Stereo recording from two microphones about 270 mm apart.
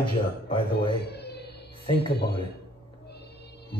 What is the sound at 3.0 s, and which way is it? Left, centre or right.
Music, left.